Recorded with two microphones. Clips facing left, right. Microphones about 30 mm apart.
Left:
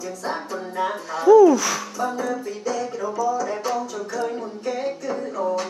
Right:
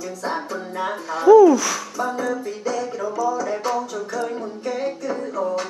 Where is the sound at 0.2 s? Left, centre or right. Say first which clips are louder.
Right 2 dB; centre.